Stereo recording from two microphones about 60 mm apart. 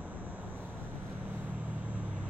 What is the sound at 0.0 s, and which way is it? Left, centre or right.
Vehicle, right.